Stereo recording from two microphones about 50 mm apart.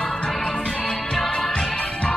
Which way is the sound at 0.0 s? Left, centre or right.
Centre.